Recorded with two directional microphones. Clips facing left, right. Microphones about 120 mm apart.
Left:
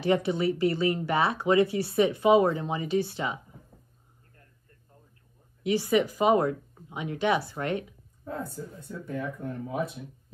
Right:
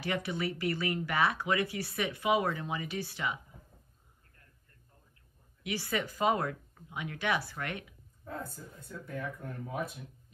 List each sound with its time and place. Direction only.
0.0 s speech: 25° left (ahead or behind)
5.6 s speech: 20° left (ahead or behind)
8.3 s speech: 55° left (ahead or behind)
8.8 s speech: 25° left (ahead or behind)